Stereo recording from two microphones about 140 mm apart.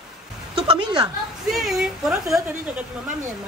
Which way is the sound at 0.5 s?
35° right (ahead or behind).